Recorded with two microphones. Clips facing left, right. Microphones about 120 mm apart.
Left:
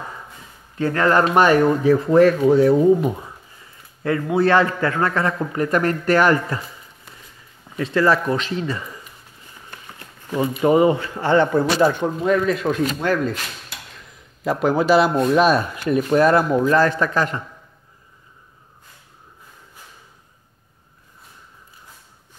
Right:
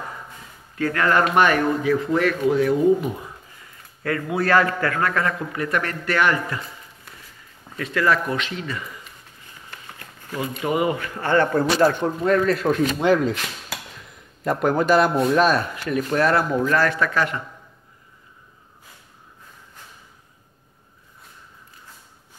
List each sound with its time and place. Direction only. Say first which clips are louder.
0.7 s a man's voice: left 3 dB; 25° left (ahead or behind)
7.7 s speech: left 3 dB; 30° left (ahead or behind)
9.7 s a sound: even; 20° left (ahead or behind)
10.6 s a man's voice: left 7 dB; 30° left (ahead or behind)
12.2 s speech: even; 5° left (ahead or behind)
13.0 s speech: right 2 dB; 15° right (ahead or behind)
14.4 s speech: left 1 dB; 5° left (ahead or behind)
15.7 s a man's voice: left 5 dB; 25° left (ahead or behind)
17.0 s speech: left 2 dB; 35° left (ahead or behind)